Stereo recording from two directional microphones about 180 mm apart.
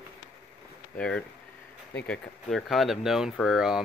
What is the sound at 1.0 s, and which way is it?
Speech, 5° left (ahead or behind).